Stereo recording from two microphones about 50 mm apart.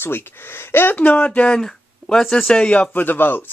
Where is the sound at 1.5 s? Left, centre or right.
Centre.